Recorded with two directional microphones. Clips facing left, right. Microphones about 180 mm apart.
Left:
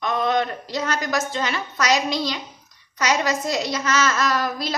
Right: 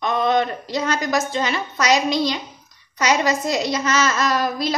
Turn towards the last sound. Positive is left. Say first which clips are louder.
# right 3 dB
turn(degrees=-20)  # may be behind; listen again after turning